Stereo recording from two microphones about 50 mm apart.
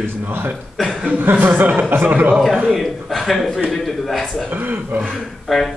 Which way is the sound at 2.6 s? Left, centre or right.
Centre.